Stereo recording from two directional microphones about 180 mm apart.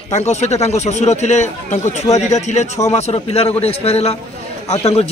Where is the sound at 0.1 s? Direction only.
40° left (ahead or behind).